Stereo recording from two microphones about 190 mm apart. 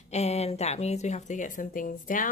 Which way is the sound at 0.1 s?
35° left (ahead or behind).